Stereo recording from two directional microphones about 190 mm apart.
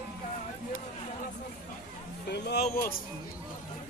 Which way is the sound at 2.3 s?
60° left (ahead or behind).